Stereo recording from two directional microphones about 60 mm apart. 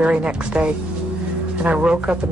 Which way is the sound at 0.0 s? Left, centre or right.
Centre.